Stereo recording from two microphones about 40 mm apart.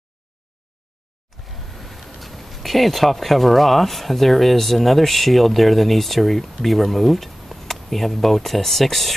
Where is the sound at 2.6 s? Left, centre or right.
Centre.